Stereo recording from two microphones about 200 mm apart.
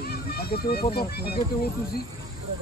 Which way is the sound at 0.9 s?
50° left (ahead or behind).